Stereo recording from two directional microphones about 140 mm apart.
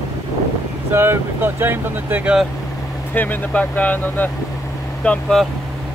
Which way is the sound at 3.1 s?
15° left (ahead or behind).